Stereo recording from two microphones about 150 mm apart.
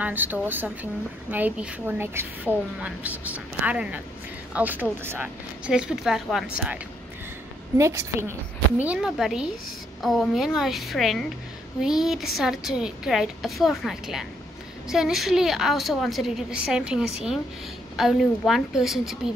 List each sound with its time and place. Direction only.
0.0 s a woman's voice: 10° right (ahead or behind)
7.7 s a woman's voice: 20° right (ahead or behind)
8.8 s a woman's voice: 5° right (ahead or behind)